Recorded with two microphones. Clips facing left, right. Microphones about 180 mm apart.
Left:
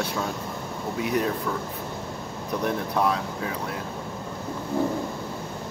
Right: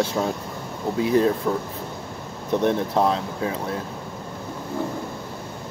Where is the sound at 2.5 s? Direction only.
30° right (ahead or behind).